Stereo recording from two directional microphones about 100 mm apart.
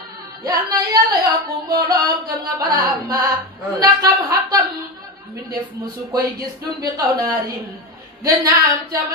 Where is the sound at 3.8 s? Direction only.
40° right (ahead or behind).